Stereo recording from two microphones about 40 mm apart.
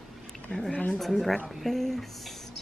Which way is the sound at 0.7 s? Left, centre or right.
Left.